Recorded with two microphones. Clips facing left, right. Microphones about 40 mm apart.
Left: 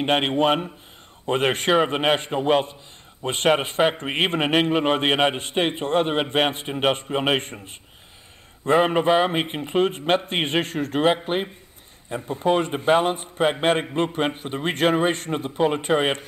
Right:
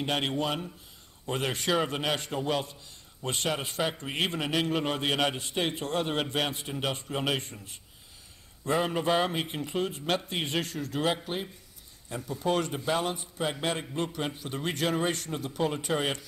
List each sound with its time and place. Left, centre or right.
0.0 s a man's voice: left